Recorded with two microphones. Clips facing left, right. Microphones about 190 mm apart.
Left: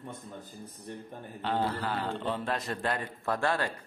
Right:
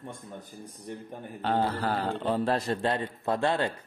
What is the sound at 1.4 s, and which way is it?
Speech, 45° right (ahead or behind).